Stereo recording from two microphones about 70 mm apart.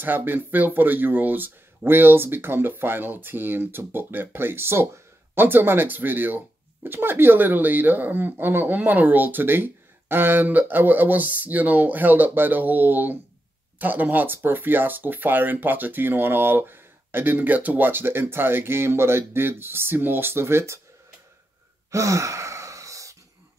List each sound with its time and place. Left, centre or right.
0.0 s speech: right
21.9 s sigh: right